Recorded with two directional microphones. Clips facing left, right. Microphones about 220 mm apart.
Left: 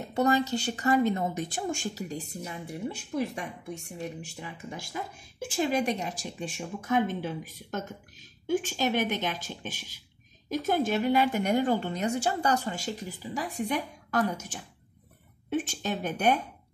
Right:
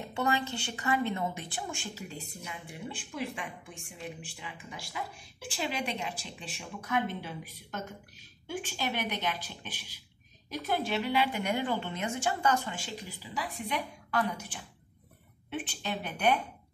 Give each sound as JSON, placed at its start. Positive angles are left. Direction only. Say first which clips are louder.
{"t": 0.1, "sound": "speech", "louder": "left 7 dB", "side_deg": 40}